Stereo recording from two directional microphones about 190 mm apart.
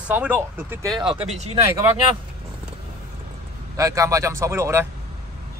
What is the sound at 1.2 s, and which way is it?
Speech, 35° right (ahead or behind).